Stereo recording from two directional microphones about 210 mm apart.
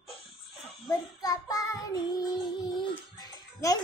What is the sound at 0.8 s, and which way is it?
Speech, 15° left (ahead or behind).